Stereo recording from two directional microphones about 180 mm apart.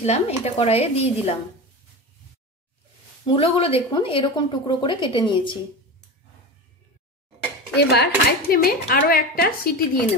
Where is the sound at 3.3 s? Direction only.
30° left (ahead or behind).